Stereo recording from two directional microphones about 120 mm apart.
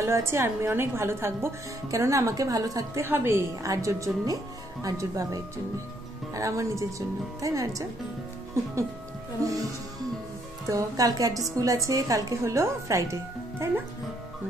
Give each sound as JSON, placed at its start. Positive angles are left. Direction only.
{"t": 0.0, "sound": "speech", "side_deg": -20}
{"t": 9.4, "sound": "speech", "side_deg": -30}
{"t": 10.7, "sound": "speech", "side_deg": -30}